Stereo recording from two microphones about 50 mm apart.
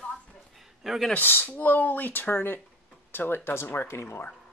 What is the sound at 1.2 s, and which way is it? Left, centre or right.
Speech, left.